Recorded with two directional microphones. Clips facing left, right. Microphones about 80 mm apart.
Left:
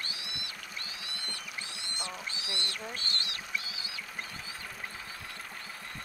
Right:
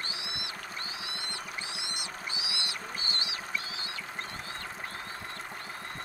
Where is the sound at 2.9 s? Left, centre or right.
Centre.